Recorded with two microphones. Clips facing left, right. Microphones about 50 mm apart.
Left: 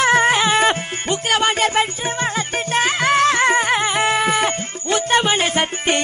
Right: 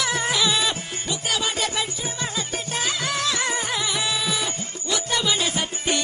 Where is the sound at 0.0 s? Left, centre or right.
Left.